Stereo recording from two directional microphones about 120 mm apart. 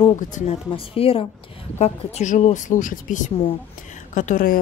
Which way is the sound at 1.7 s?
65° left (ahead or behind).